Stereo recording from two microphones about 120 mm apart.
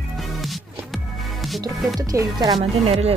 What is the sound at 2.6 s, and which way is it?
Speech, 55° right (ahead or behind).